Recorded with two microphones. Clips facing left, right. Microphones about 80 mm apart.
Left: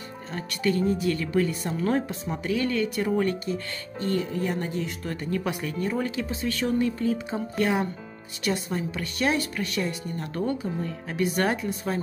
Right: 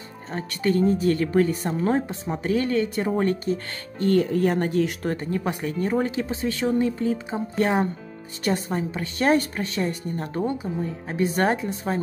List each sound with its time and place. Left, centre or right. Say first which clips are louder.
0.3 s speech: right 3 dB; right
5.1 s speech: right 2 dB; right